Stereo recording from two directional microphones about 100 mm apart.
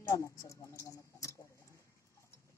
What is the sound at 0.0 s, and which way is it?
Speech, 30° left (ahead or behind).